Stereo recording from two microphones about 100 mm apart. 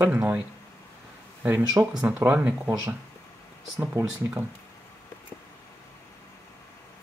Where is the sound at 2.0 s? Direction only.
20° right (ahead or behind).